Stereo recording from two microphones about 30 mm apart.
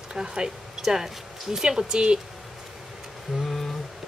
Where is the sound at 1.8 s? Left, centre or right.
Right.